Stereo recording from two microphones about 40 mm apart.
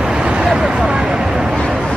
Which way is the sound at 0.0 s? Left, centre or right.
Right.